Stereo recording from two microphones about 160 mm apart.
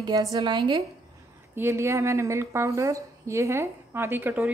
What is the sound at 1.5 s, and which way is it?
A woman's voice, 15° right (ahead or behind).